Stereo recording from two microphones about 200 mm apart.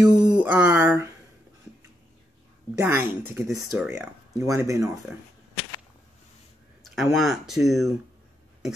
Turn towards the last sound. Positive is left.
turn(degrees=0)  # may be behind; listen again after turning